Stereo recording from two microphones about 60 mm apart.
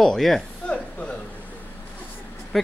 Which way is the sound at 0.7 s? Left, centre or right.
Left.